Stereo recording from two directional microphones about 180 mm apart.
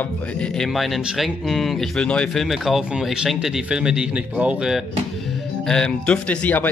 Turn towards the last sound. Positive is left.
turn(degrees=10)  # may be behind; listen again after turning